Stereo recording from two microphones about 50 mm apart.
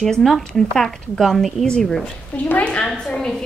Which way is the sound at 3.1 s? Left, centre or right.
Centre.